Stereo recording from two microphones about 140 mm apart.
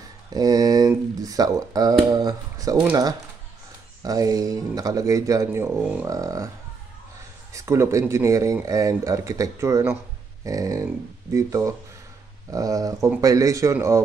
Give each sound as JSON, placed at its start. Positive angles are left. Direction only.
{"t": 0.3, "sound": "speech", "side_deg": -30}
{"t": 7.5, "sound": "speech", "side_deg": -20}